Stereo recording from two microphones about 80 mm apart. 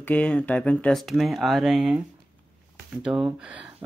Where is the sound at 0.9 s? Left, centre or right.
Centre.